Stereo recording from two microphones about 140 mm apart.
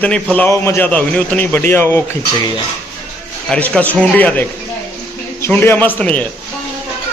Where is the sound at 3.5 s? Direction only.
10° left (ahead or behind).